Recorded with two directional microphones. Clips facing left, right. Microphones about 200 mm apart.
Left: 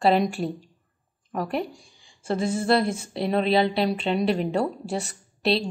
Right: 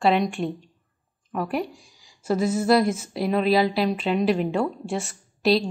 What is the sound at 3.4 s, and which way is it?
Speech, 30° left (ahead or behind).